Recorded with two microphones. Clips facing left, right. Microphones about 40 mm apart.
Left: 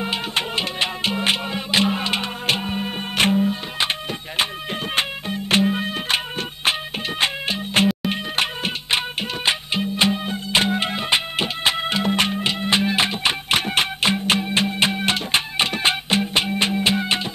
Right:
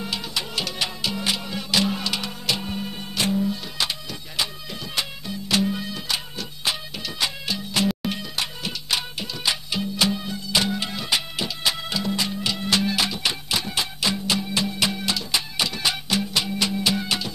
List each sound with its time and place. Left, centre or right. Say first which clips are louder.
0.0 s music: left 5 dB; left
4.9 s music: left 4 dB; left